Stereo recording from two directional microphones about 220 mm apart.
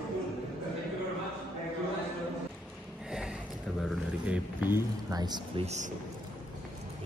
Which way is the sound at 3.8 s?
Centre (ahead or behind).